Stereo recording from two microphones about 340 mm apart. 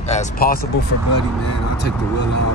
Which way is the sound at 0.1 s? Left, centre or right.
Left.